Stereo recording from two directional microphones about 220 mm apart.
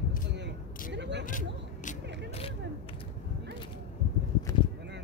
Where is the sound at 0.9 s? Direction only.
50° right (ahead or behind).